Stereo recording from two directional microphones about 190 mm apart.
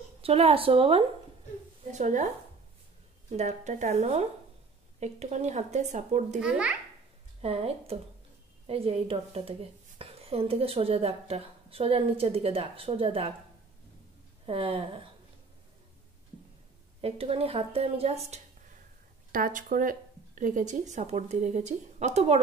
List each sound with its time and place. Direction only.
0.2 s a woman's voice: 30° right (ahead or behind)
6.4 s a child's voice: 5° right (ahead or behind)
7.4 s a woman's voice: 30° right (ahead or behind)
14.4 s a woman's voice: 30° right (ahead or behind)
17.0 s a woman's voice: 30° right (ahead or behind)
19.3 s a woman's voice: 45° right (ahead or behind)